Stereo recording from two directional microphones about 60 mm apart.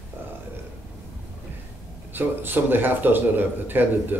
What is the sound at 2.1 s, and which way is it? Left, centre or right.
A man's voice, right.